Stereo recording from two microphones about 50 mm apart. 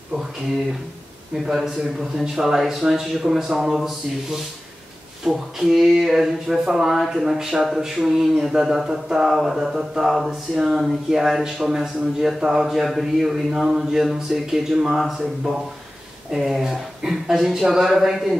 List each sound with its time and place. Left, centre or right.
1.3 s speech: centre